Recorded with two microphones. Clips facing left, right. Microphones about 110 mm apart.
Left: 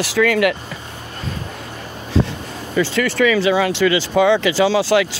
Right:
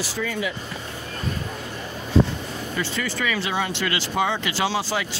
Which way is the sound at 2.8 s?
85° left.